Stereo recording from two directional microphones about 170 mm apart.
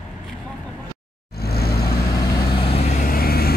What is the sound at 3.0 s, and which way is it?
Vehicle, 60° left (ahead or behind).